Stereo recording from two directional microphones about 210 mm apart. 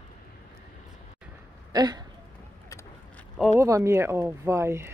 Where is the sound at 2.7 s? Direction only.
10° left (ahead or behind).